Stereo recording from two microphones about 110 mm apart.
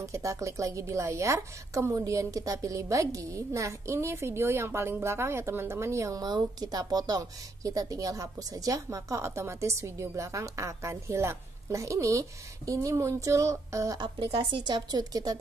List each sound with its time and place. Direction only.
0.0 s a woman's voice: 30° right (ahead or behind)
13.9 s a woman's voice: 45° right (ahead or behind)